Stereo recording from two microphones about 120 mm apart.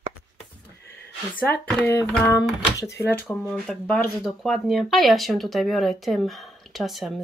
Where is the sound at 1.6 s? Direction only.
20° left (ahead or behind).